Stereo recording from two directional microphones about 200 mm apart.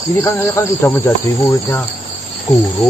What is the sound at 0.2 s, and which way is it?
Speech, 10° left (ahead or behind).